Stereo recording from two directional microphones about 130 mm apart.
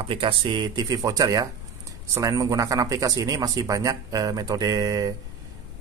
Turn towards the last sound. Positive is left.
turn(degrees=-30)  # may be behind; listen again after turning